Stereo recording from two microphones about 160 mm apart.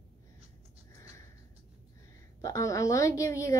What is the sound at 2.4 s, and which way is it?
A woman's voice, 20° left (ahead or behind).